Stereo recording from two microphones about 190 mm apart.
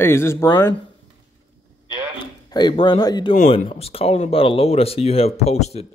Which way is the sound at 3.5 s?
30° left (ahead or behind).